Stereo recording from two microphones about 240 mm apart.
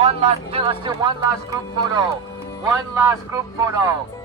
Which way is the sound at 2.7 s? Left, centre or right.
Centre.